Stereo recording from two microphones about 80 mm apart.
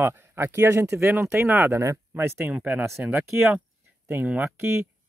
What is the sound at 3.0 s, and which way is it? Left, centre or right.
Speech, centre.